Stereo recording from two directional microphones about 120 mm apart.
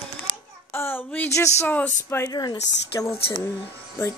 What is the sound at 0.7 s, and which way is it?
Child singing, 20° left (ahead or behind).